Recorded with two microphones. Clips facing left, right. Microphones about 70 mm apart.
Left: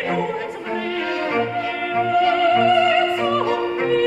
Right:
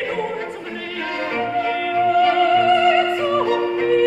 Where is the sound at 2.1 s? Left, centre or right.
Centre.